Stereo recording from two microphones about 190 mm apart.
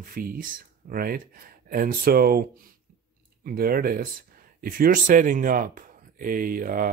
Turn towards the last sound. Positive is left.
turn(degrees=-45)  # may be behind; listen again after turning